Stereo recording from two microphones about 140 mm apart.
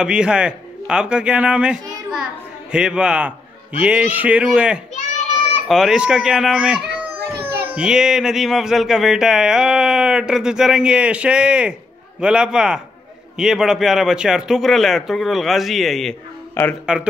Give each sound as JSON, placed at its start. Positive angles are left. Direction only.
{"t": 0.0, "sound": "a man's voice", "side_deg": -5}
{"t": 4.9, "sound": "child singing", "side_deg": 45}
{"t": 5.7, "sound": "speech", "side_deg": 0}
{"t": 16.6, "sound": "speech", "side_deg": 15}